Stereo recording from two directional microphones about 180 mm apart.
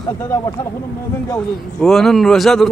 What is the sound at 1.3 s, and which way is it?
Speech, centre (ahead or behind).